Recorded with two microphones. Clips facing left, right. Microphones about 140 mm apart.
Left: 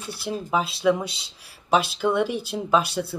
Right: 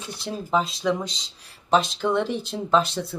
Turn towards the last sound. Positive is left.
turn(degrees=10)  # may be behind; listen again after turning